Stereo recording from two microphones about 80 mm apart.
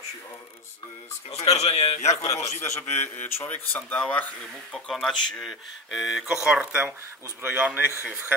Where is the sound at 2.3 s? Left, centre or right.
Left.